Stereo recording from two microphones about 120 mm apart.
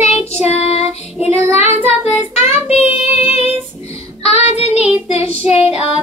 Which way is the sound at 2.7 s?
60° left (ahead or behind).